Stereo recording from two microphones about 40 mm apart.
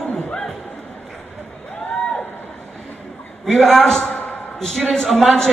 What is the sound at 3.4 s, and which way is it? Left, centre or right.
A man's voice, centre.